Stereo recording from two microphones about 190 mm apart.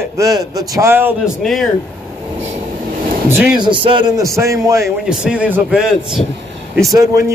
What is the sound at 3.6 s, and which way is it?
A man's voice, 25° right (ahead or behind).